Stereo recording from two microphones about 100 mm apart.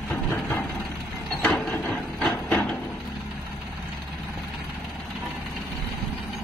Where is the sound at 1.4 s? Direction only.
10° left (ahead or behind).